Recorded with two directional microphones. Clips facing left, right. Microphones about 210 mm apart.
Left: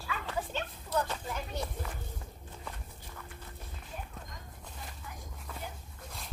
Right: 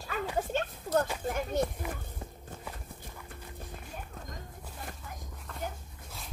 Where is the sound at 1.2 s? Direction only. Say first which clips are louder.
Right 7 dB; 50° right (ahead or behind).